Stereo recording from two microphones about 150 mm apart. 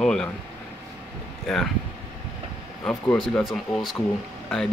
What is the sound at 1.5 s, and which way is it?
Speech, centre (ahead or behind).